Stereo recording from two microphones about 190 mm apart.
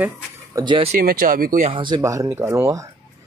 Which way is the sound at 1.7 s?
25° right (ahead or behind).